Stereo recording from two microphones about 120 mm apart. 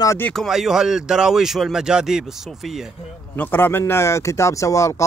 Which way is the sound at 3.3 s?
15° left (ahead or behind).